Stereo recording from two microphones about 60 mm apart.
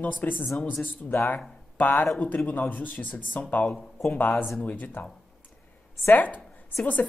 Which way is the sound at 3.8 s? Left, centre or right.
Centre.